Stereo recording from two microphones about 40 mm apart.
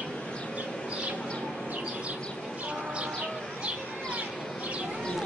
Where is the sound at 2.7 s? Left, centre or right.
Right.